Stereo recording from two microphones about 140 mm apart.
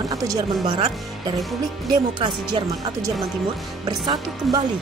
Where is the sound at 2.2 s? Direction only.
30° right (ahead or behind).